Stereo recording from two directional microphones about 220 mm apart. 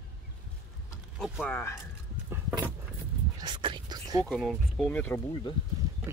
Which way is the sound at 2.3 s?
10° right (ahead or behind).